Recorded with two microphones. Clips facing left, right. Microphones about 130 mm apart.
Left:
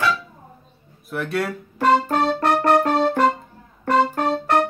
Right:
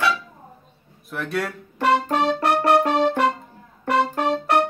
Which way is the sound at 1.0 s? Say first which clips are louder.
Left 2 dB; centre (ahead or behind).